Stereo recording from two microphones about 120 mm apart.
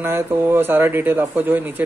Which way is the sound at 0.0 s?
20° right (ahead or behind).